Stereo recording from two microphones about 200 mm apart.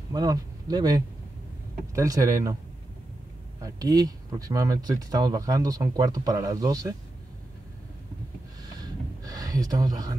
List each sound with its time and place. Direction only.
0.1 s speech: 20° right (ahead or behind)
3.6 s speech: 20° right (ahead or behind)
8.7 s a sound: 20° right (ahead or behind)